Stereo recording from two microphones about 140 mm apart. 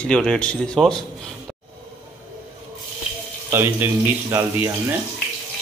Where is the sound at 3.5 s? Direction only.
20° right (ahead or behind).